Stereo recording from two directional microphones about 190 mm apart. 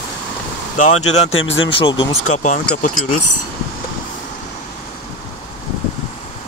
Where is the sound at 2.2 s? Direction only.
40° left (ahead or behind).